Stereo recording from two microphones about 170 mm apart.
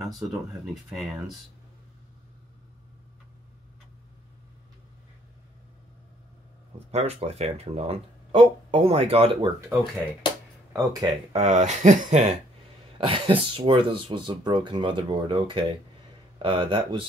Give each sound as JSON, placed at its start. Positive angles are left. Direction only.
{"t": 0.0, "sound": "speech", "side_deg": 0}
{"t": 6.9, "sound": "speech", "side_deg": -40}
{"t": 9.7, "sound": "speech", "side_deg": -15}
{"t": 11.3, "sound": "speech", "side_deg": -45}
{"t": 12.9, "sound": "speech", "side_deg": -30}